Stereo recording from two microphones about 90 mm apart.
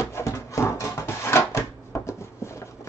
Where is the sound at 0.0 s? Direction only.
35° left (ahead or behind).